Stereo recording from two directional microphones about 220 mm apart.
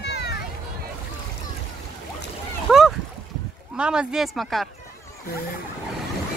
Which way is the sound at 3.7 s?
5° right (ahead or behind).